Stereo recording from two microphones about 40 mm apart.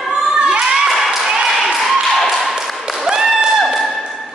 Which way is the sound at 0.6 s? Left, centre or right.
Centre.